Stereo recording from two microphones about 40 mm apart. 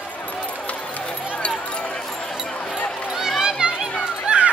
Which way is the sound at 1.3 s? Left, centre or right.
Left.